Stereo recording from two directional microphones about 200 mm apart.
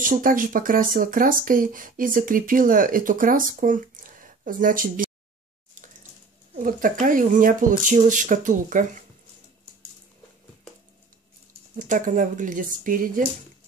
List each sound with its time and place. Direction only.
0.0 s speech: 45° right (ahead or behind)
5.8 s a sound: 40° right (ahead or behind)
6.6 s speech: 45° right (ahead or behind)
11.7 s speech: 40° right (ahead or behind)